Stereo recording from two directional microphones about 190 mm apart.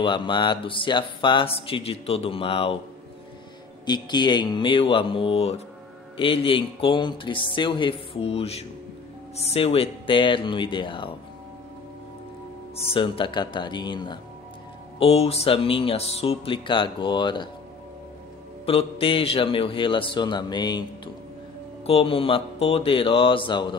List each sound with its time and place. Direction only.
0.0 s speech: 25° left (ahead or behind)
3.8 s speech: 20° left (ahead or behind)
12.9 s speech: 25° left (ahead or behind)
18.7 s speech: 30° left (ahead or behind)
21.8 s speech: 30° left (ahead or behind)